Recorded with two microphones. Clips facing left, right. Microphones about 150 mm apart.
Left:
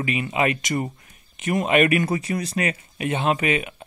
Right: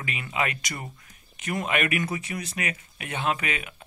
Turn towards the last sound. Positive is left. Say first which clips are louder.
# left 9 dB
turn(degrees=20)  # may be behind; listen again after turning